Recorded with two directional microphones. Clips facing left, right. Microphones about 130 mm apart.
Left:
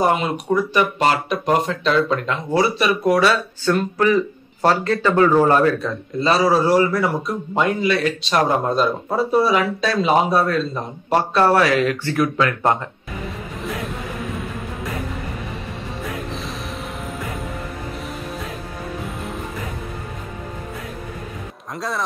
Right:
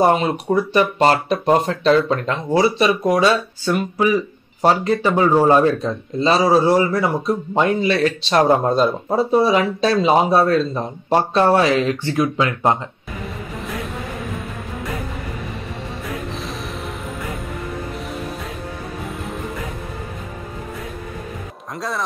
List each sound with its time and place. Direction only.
0.0 s speech: 30° right (ahead or behind)
2.5 s a man's voice: 25° right (ahead or behind)
13.7 s music: centre (ahead or behind)
21.7 s speech: centre (ahead or behind)